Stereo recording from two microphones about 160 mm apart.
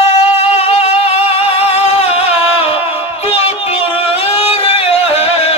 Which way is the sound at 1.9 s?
40° left (ahead or behind).